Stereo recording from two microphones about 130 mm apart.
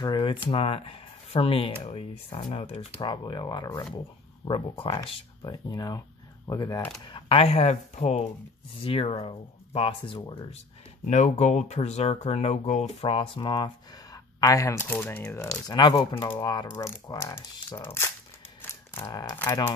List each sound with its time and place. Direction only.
0.0 s speech: 35° left (ahead or behind); by 2.9 s 55° left (ahead or behind)
3.0 s speech: 35° left (ahead or behind)
7.1 s speech: 40° left (ahead or behind)
11.1 s speech: 65° left (ahead or behind); by 18.1 s 20° left (ahead or behind)
18.6 s mechanisms: 15° left (ahead or behind)